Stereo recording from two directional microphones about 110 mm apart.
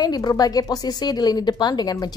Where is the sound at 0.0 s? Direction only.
40° left (ahead or behind).